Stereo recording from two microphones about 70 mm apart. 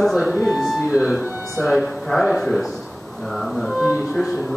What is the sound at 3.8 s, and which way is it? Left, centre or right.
Speech, right.